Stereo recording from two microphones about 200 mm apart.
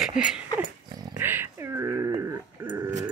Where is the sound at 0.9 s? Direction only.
15° right (ahead or behind).